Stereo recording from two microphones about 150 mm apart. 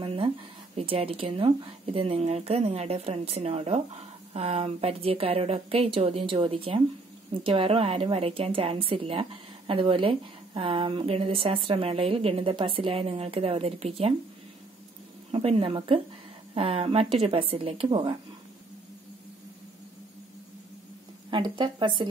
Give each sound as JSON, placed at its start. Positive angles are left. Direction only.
{"t": 0.0, "sound": "a sound", "side_deg": -40}
{"t": 0.7, "sound": "a woman's voice", "side_deg": -40}
{"t": 15.3, "sound": "a woman's voice", "side_deg": -40}
{"t": 21.3, "sound": "a woman's voice", "side_deg": -30}